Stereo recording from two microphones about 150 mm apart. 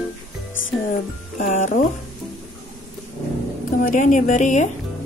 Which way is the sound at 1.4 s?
55° left (ahead or behind).